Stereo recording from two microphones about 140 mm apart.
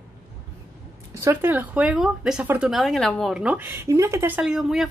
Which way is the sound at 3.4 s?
10° right (ahead or behind).